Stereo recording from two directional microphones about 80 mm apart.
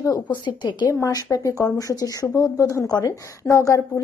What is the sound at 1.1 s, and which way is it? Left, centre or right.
A woman's voice, left.